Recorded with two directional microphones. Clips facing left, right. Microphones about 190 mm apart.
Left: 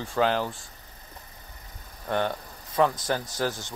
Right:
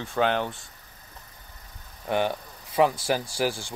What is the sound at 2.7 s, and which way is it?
Speech, 10° right (ahead or behind).